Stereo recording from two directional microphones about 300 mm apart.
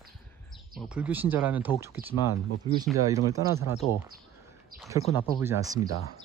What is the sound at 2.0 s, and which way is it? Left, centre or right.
Speech, right.